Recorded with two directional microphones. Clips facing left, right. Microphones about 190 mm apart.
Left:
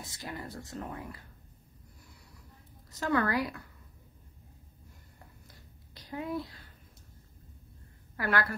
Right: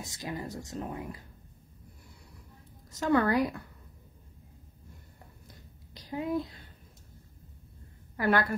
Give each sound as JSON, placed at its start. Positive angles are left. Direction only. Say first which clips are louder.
{"t": 0.0, "sound": "speech", "louder": "right 4 dB", "side_deg": -15}
{"t": 3.0, "sound": "speech", "louder": "right 4 dB", "side_deg": -20}
{"t": 5.9, "sound": "a child's voice", "louder": "right 4 dB", "side_deg": -20}
{"t": 8.2, "sound": "speech", "louder": "right 4 dB", "side_deg": -20}